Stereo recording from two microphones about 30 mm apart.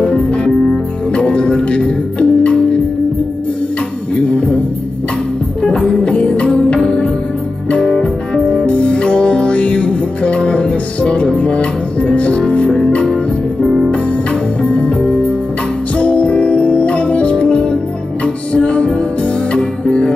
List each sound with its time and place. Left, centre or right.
0.4 s music: left
5.9 s music: left
6.2 s music: left
8.6 s music: left
13.0 s music: centre
14.6 s music: left
16.0 s music: left